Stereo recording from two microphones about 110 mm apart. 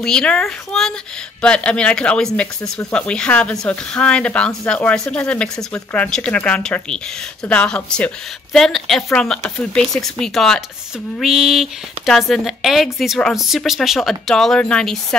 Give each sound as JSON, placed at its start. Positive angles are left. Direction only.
{"t": 0.0, "sound": "a woman's voice", "side_deg": 5}